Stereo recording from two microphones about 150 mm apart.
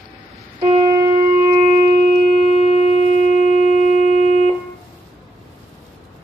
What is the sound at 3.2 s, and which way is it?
Shofar, 55° left (ahead or behind).